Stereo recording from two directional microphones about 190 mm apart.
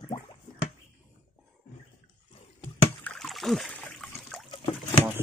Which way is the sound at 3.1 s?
Centre (ahead or behind).